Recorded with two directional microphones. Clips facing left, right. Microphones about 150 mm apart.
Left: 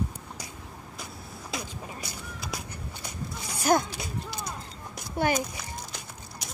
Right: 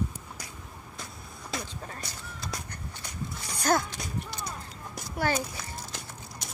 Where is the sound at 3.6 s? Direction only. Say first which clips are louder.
Left 2 dB; 10° left (ahead or behind).